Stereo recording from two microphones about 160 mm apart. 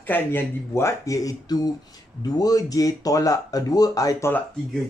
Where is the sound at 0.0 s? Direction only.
10° left (ahead or behind).